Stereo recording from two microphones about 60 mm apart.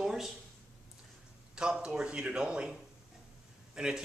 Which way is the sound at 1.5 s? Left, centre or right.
Centre.